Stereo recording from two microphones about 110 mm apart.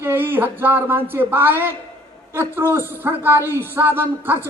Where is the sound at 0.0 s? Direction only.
20° right (ahead or behind).